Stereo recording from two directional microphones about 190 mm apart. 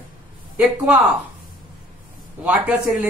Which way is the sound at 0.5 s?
5° right (ahead or behind).